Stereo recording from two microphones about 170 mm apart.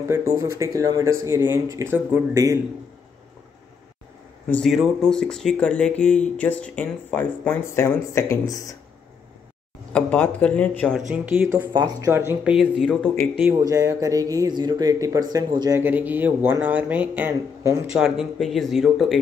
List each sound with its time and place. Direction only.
0.1 s speech: 15° right (ahead or behind)
4.5 s speech: 5° left (ahead or behind)
9.9 s speech: 5° left (ahead or behind)
11.0 s speech: 10° right (ahead or behind)
11.7 s speech: 20° right (ahead or behind)
12.4 s speech: 5° right (ahead or behind)
12.8 s speech: 5° left (ahead or behind)
13.4 s speech: 15° right (ahead or behind)
15.8 s speech: 10° right (ahead or behind)
17.9 s speech: centre (ahead or behind)